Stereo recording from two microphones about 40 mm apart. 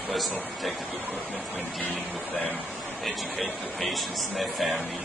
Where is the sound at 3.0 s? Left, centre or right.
Centre.